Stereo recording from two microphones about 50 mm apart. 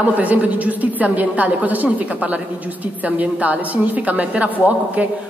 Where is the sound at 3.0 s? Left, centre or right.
Right.